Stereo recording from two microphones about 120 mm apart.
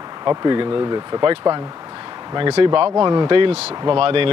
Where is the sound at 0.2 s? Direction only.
35° right (ahead or behind).